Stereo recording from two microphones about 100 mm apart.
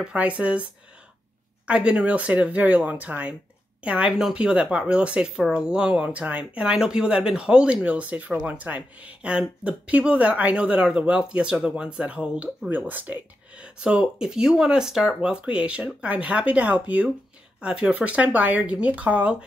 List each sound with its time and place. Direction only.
0.0 s speech: 10° right (ahead or behind)
1.7 s speech: 10° right (ahead or behind)